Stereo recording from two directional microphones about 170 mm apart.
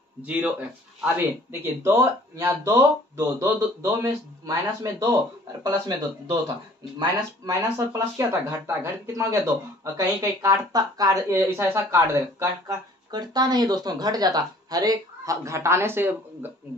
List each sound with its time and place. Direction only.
0.2 s speech: 10° right (ahead or behind)